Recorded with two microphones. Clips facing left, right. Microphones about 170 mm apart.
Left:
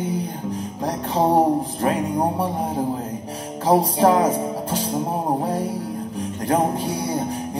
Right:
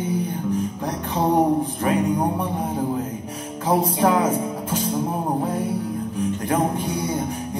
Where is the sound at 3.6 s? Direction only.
35° left (ahead or behind).